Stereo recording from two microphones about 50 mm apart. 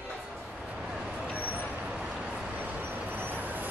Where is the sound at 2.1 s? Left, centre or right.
Centre.